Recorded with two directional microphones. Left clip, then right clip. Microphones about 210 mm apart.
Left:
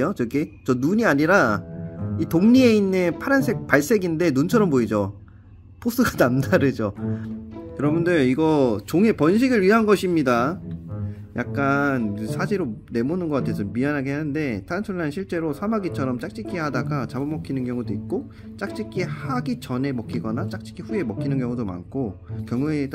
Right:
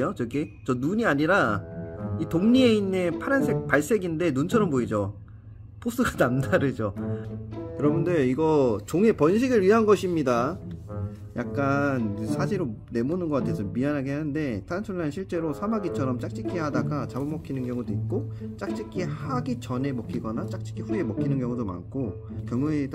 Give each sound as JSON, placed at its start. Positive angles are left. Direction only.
{"t": 0.7, "sound": "speech", "side_deg": 40}